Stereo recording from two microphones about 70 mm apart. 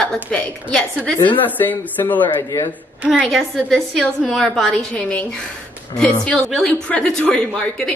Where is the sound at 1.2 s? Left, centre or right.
Left.